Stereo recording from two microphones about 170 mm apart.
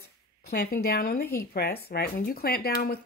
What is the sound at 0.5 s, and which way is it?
A woman's voice, 65° left (ahead or behind).